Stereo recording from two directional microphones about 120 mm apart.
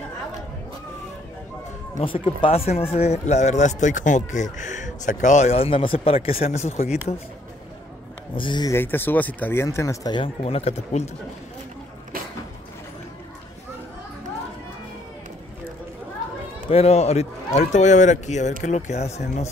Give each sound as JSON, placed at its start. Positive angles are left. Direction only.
{"t": 2.0, "sound": "speech", "side_deg": 45}
{"t": 8.4, "sound": "speech", "side_deg": 40}
{"t": 8.6, "sound": "speech", "side_deg": 20}
{"t": 10.1, "sound": "speech", "side_deg": 50}
{"t": 16.6, "sound": "a man's voice", "side_deg": 60}